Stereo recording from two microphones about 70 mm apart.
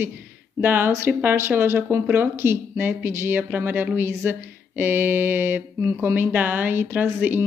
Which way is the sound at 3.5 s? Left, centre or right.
Right.